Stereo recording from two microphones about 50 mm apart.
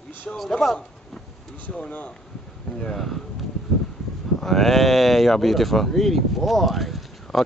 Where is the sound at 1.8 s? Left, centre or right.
Left.